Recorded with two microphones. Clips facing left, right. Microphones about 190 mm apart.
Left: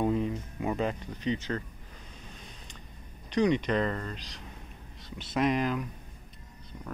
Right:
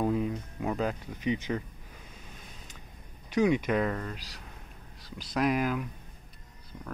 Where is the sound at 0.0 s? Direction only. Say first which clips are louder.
Even; centre (ahead or behind).